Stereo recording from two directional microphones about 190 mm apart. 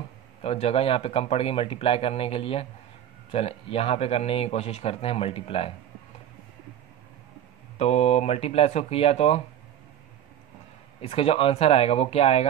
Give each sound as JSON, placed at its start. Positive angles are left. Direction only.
{"t": 0.4, "sound": "a man's voice", "side_deg": 35}
{"t": 7.8, "sound": "a man's voice", "side_deg": 35}
{"t": 11.0, "sound": "a man's voice", "side_deg": 30}